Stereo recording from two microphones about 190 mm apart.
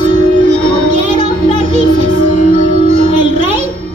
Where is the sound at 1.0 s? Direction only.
35° right (ahead or behind).